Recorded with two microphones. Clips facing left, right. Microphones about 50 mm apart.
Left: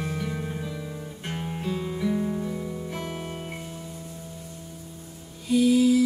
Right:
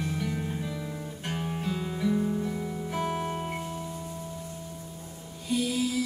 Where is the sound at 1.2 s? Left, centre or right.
Centre.